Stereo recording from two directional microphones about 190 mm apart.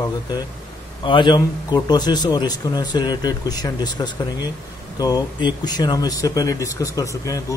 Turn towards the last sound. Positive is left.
turn(degrees=20)  # may be behind; listen again after turning